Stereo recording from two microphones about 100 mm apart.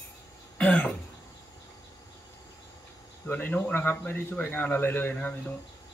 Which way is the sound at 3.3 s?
20° left (ahead or behind).